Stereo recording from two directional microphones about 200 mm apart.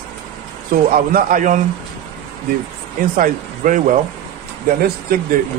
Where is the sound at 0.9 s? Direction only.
45° right (ahead or behind).